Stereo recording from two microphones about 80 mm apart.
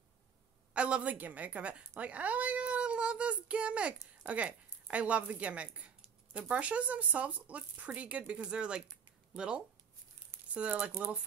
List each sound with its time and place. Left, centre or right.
0.7 s speech: centre